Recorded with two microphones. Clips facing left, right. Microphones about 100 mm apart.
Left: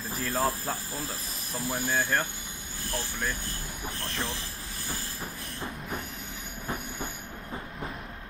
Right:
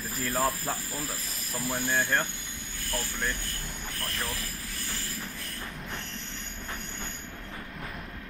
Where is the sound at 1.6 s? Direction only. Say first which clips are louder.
Even; 10° left (ahead or behind).